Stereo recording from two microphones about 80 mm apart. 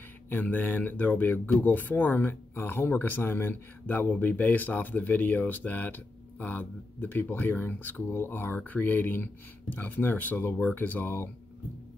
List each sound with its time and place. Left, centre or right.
0.3 s speech: left